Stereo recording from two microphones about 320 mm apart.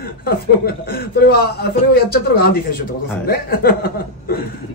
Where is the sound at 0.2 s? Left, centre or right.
Left.